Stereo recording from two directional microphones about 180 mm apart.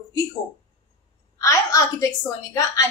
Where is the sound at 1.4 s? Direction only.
15° left (ahead or behind).